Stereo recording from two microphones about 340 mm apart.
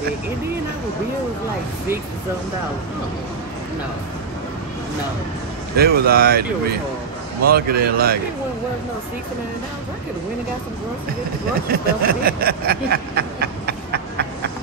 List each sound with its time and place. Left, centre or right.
5.8 s speech: right
7.4 s speech: right
11.7 s a sound: right